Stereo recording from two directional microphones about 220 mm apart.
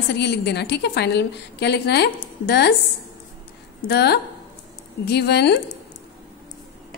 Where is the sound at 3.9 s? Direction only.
50° left (ahead or behind).